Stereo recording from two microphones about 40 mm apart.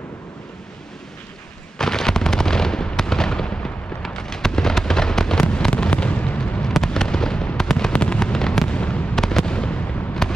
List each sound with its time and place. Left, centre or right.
1.8 s fireworks: centre
5.7 s fireworks: left
6.7 s fireworks: centre
7.9 s fireworks: left
8.6 s fireworks: left
9.1 s fireworks: centre
9.5 s fireworks: left